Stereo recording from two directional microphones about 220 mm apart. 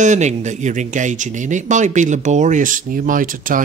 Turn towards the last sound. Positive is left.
turn(degrees=-40)  # may be behind; listen again after turning